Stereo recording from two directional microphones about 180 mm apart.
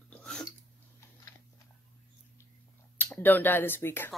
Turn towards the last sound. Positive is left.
turn(degrees=10)  # may be behind; listen again after turning